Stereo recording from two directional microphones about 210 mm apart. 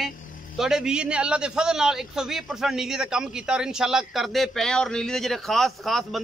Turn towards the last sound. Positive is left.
turn(degrees=0)  # may be behind; listen again after turning